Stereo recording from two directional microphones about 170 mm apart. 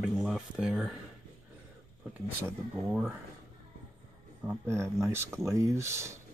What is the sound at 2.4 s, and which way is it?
Speech, 15° right (ahead or behind).